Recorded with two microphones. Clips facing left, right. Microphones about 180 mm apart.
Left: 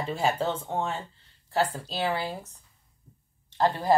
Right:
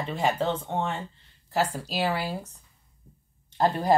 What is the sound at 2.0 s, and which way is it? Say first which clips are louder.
Speech: right 1 dB; 10° right (ahead or behind).